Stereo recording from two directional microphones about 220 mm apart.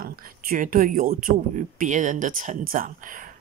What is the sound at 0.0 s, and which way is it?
Speech, 40° right (ahead or behind).